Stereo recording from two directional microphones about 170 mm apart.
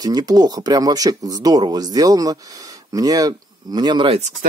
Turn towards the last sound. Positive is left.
turn(degrees=-30)  # may be behind; listen again after turning